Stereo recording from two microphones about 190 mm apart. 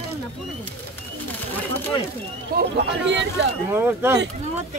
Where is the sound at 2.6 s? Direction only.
60° right (ahead or behind).